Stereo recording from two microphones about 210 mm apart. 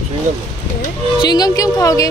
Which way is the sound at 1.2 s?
20° left (ahead or behind).